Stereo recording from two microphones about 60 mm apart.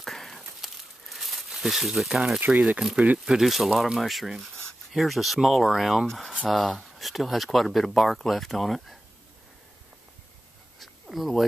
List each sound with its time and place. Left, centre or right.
0.0 s crumpling: centre
2.4 s speech: right
3.3 s speech: centre
6.0 s speech: centre
11.1 s speech: centre